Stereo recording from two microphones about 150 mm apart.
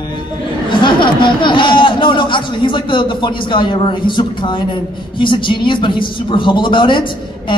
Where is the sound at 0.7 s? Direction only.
30° left (ahead or behind).